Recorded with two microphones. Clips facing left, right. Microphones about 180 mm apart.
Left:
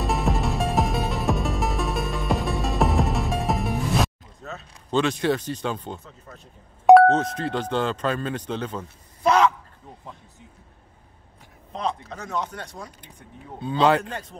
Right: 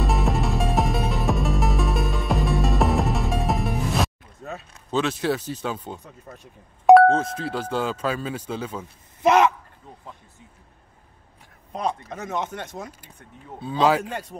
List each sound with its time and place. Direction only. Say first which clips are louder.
0.0 s music: right 1 dB; centre (ahead or behind)
4.5 s speech: even; 5° right (ahead or behind)
6.0 s speech: right 2 dB; 15° right (ahead or behind)
6.9 s speech: even; centre (ahead or behind)
9.2 s a man's voice: right 2 dB; 20° right (ahead or behind)
11.7 s speech: right 1 dB; 15° right (ahead or behind)
13.6 s speech: left 1 dB; 5° right (ahead or behind)